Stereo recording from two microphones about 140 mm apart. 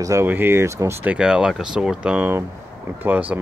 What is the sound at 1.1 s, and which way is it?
Speech, 5° right (ahead or behind).